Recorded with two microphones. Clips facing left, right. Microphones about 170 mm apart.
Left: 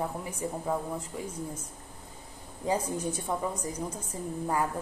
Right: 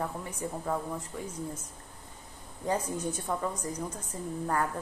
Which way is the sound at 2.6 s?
10° left (ahead or behind).